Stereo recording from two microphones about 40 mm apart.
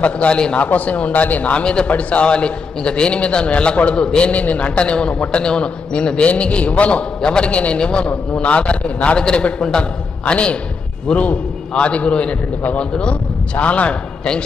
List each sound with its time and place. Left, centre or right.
0.0 s a man's voice: left
1.6 s a man's voice: left
1.9 s a man's voice: left
4.3 s a man's voice: left
11.7 s a man's voice: left